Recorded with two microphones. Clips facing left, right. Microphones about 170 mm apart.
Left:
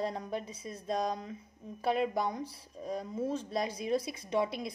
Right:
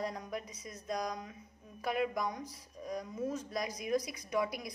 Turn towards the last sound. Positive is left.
turn(degrees=25)  # may be behind; listen again after turning